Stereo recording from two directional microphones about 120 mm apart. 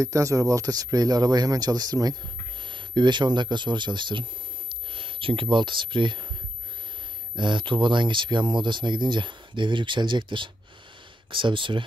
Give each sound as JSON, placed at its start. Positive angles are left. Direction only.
{"t": 0.0, "sound": "speech", "side_deg": -25}
{"t": 7.3, "sound": "speech", "side_deg": -40}